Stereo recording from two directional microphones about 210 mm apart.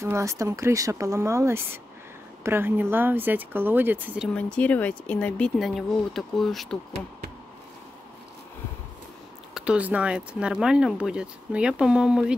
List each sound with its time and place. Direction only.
0.0 s speech: 15° right (ahead or behind)
4.3 s speech: 5° left (ahead or behind)
9.5 s speech: 5° right (ahead or behind)